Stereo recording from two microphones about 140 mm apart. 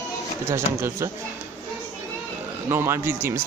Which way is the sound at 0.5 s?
20° right (ahead or behind).